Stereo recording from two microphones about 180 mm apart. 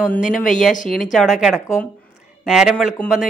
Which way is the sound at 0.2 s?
45° left (ahead or behind).